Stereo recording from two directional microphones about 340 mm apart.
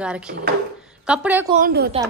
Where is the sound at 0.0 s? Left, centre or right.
Centre.